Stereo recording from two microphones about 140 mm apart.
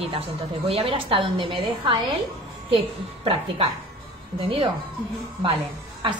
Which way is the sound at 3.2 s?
40° right (ahead or behind).